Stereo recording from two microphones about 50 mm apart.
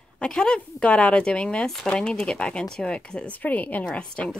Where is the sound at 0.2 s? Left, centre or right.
Centre.